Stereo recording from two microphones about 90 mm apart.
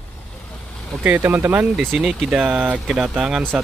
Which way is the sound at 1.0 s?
20° right (ahead or behind).